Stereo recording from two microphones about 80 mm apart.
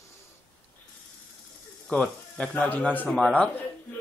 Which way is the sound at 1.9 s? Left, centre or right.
Centre.